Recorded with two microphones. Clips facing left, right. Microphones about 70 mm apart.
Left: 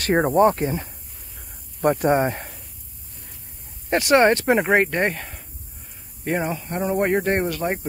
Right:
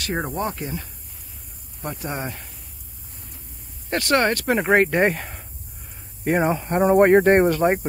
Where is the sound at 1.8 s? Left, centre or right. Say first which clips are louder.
Left 12 dB; left.